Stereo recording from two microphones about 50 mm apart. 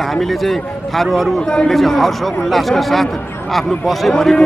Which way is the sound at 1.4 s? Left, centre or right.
Centre.